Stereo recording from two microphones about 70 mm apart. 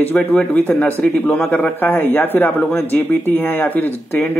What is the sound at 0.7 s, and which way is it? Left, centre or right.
A man's voice, left.